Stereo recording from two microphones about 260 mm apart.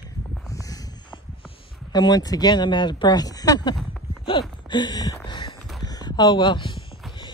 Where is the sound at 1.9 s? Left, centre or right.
Centre.